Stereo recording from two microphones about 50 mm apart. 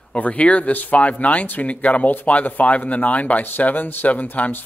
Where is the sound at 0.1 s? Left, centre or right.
Left.